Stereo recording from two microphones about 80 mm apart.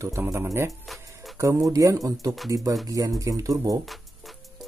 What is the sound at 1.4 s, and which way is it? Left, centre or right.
Speech, right.